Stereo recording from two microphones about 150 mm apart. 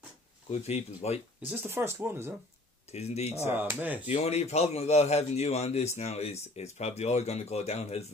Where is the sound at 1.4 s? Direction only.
15° right (ahead or behind).